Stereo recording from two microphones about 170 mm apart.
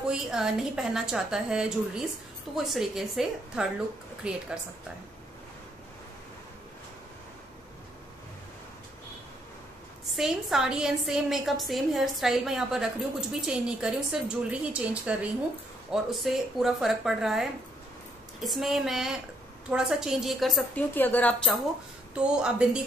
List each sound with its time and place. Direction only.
0.1 s a woman's voice: 5° right (ahead or behind)
10.1 s a woman's voice: centre (ahead or behind)
20.9 s speech: 10° left (ahead or behind)
22.1 s a woman's voice: 5° right (ahead or behind)